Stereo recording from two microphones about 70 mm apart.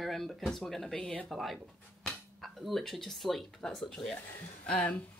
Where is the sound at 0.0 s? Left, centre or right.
Centre.